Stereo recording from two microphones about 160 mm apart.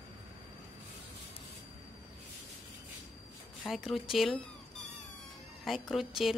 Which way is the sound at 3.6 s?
Centre (ahead or behind).